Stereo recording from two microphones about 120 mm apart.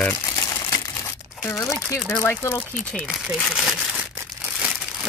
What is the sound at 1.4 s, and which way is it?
Speech, 25° left (ahead or behind).